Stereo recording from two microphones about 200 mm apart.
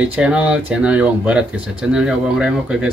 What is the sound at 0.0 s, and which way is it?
Speech, 5° right (ahead or behind).